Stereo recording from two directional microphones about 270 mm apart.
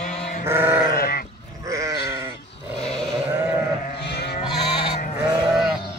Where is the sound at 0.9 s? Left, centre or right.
Left.